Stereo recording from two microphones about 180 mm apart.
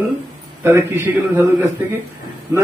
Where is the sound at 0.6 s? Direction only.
15° right (ahead or behind).